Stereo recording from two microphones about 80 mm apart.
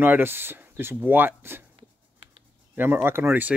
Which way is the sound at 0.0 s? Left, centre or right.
Right.